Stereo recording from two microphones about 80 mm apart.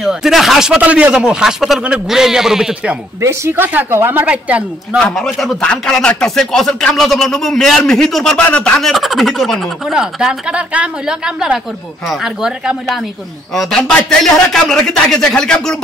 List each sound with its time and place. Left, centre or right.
0.0 s speech: centre
3.2 s speech: right; by 4.6 s centre
4.9 s speech: centre
8.4 s speech: centre
8.7 s speech: centre
13.6 s speech: centre